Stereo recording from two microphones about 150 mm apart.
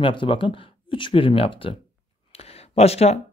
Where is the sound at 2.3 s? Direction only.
40° left (ahead or behind).